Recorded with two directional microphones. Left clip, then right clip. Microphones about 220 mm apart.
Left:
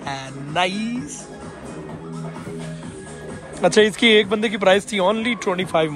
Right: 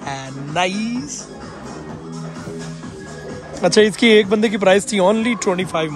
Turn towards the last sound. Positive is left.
turn(degrees=-5)  # may be behind; listen again after turning